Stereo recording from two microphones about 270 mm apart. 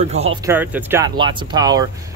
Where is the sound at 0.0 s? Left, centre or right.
Right.